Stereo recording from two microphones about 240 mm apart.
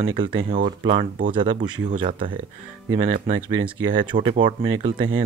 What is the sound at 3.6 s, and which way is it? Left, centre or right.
Speech, right.